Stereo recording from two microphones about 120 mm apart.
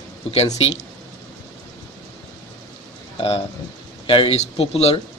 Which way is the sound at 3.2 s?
55° left (ahead or behind).